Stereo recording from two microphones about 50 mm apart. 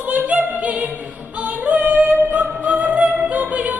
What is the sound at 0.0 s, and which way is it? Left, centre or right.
Opera, right.